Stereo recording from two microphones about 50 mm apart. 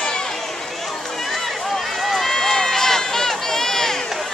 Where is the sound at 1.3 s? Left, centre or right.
Centre.